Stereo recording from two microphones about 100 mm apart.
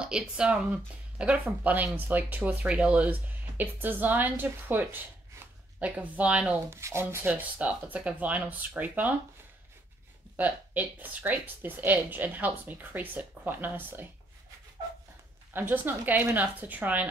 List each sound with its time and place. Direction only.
0.0 s speech: 10° right (ahead or behind)
6.7 s speech: 25° right (ahead or behind)
10.3 s speech: 15° right (ahead or behind)
15.5 s a woman's voice: 20° right (ahead or behind)